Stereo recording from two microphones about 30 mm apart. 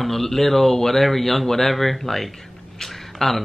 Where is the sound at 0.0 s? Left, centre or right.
Centre.